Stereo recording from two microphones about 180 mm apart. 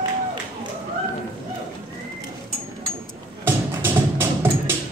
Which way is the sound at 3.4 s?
10° right (ahead or behind).